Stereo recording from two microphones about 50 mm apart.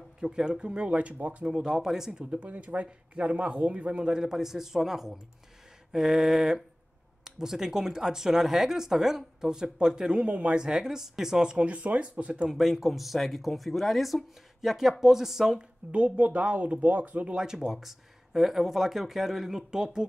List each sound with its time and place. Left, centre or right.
0.2 s speech: centre
1.5 s speech: centre
2.3 s speech: right
10.2 s speech: right
10.6 s speech: centre
12.4 s speech: centre
15.9 s speech: right
17.4 s speech: centre